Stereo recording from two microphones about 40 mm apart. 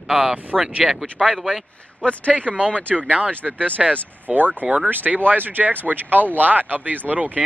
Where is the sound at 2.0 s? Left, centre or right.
Left.